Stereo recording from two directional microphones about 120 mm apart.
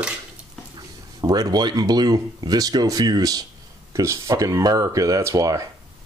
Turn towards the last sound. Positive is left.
turn(degrees=-30)  # may be behind; listen again after turning